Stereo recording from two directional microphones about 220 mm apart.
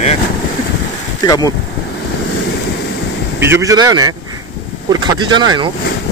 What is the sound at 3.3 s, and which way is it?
Speech, 10° right (ahead or behind).